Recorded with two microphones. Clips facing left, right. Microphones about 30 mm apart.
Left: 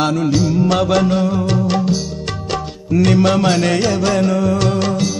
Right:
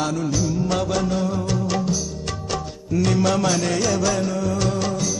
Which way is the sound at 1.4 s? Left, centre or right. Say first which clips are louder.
Left 6 dB; left.